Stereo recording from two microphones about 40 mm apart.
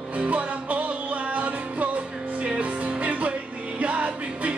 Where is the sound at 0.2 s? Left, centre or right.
Right.